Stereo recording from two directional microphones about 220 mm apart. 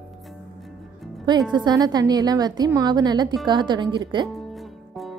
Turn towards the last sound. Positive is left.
turn(degrees=-20)  # may be behind; listen again after turning